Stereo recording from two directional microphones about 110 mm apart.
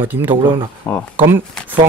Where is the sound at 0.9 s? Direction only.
20° left (ahead or behind).